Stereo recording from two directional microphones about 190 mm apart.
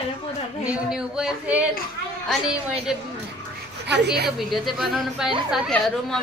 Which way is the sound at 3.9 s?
60° right (ahead or behind).